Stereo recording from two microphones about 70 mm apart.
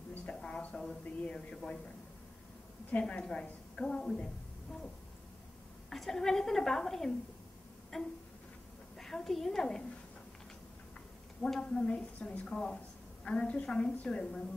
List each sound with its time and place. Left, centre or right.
0.1 s a sound: centre
0.7 s a woman's voice: centre
2.9 s a woman's voice: centre
5.9 s a woman's voice: centre
11.4 s a woman's voice: centre